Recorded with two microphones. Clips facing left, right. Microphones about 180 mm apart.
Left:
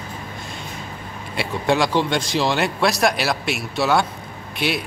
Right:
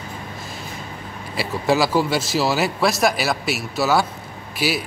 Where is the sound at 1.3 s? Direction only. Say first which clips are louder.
Even; centre (ahead or behind).